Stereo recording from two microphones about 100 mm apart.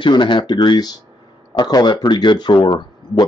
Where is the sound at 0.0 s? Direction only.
50° left (ahead or behind).